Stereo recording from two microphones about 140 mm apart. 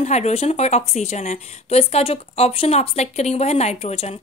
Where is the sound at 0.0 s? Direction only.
55° left (ahead or behind).